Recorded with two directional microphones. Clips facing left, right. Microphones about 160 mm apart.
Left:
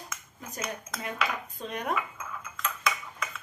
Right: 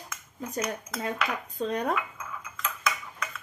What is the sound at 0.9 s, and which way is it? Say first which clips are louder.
Speech: right 5 dB; centre (ahead or behind).